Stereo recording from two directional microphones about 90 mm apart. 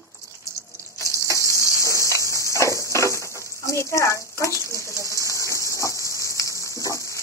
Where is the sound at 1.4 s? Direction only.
35° left (ahead or behind).